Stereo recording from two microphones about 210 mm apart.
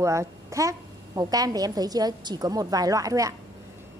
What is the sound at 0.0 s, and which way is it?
A woman's voice, 15° right (ahead or behind).